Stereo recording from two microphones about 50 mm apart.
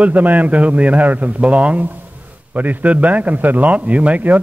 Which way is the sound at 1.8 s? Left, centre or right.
Right.